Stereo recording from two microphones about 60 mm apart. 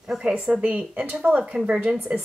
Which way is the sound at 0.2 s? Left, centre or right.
Centre.